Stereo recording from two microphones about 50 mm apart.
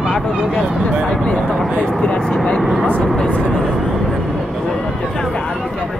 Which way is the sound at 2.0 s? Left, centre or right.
Centre.